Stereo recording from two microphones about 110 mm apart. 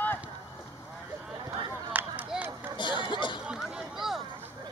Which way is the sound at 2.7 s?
45° left (ahead or behind).